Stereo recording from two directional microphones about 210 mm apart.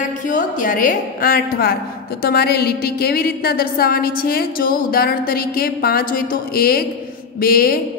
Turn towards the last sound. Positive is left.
turn(degrees=45)  # may be behind; listen again after turning